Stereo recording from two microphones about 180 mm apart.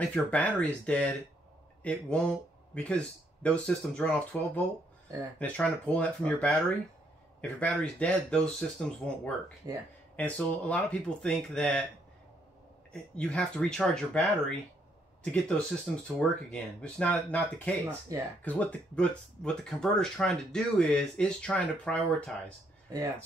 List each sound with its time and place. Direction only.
0.0 s speech: 5° left (ahead or behind)
9.6 s speech: 20° right (ahead or behind)
10.1 s speech: 10° left (ahead or behind)
12.9 s speech: 5° left (ahead or behind)
17.8 s speech: 15° right (ahead or behind)
18.4 s speech: 10° left (ahead or behind)